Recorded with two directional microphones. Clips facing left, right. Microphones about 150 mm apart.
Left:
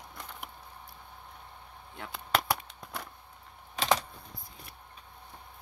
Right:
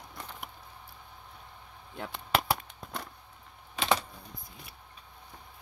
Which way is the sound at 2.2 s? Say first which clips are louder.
Right 1 dB; 10° right (ahead or behind).